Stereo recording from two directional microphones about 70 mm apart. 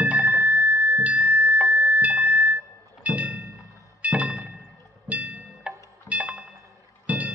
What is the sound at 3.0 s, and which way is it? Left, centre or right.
Music, centre.